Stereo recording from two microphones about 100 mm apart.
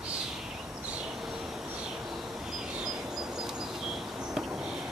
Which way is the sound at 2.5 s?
5° right (ahead or behind).